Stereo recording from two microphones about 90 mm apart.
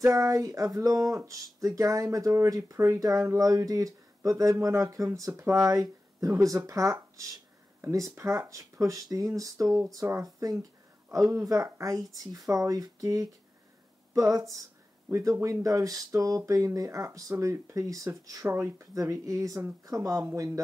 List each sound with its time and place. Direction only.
0.0 s speech: 35° right (ahead or behind)